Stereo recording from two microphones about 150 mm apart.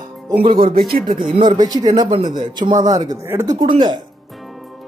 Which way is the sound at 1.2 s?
30° right (ahead or behind).